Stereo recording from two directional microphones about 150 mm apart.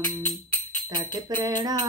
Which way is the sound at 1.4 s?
25° right (ahead or behind).